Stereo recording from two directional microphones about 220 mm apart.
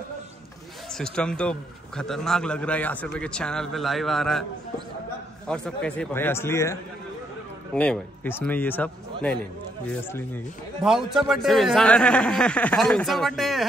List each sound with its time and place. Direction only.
0.9 s a man's voice: 5° left (ahead or behind)
5.5 s a man's voice: 5° left (ahead or behind)